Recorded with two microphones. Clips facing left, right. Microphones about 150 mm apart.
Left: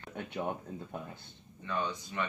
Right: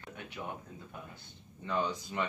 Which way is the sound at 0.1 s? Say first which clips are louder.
Left 6 dB; 50° left (ahead or behind).